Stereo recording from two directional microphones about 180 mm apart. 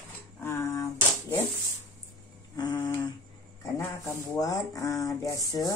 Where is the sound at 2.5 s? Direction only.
25° left (ahead or behind).